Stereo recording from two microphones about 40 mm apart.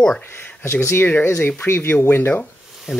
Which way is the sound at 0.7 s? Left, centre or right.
Left.